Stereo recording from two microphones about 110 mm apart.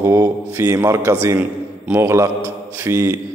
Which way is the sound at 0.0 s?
25° right (ahead or behind).